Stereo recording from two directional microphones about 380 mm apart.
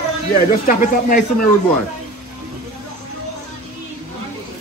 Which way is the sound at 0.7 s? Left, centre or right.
Left.